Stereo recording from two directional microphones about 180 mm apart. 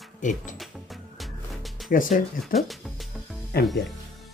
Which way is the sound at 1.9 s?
50° left (ahead or behind).